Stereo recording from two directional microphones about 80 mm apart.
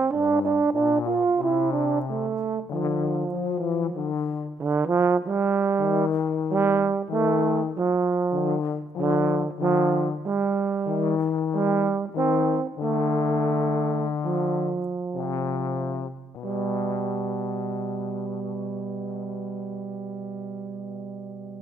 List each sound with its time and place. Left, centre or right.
0.0 s brass instrument: right
1.5 s brass instrument: left
2.2 s brass instrument: right
2.8 s brass instrument: left
4.6 s trombone: right
6.5 s brass instrument: right
11.1 s brass instrument: left
11.5 s brass instrument: right
13.0 s music: left
16.7 s brass instrument: left